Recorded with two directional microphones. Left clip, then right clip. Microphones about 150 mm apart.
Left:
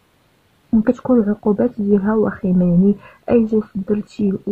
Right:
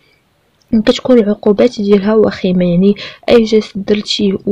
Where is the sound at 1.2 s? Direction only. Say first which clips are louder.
Right 8 dB; 30° right (ahead or behind).